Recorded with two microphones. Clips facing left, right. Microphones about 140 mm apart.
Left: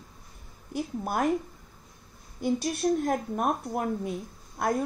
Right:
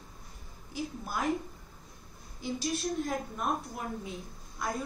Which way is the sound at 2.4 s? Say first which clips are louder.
Left 7 dB; 55° left (ahead or behind).